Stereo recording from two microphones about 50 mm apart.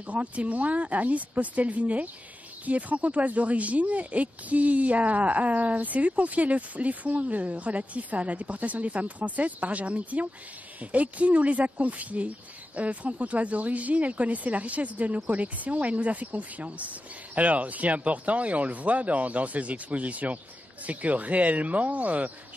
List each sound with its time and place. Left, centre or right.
0.0 s speech: right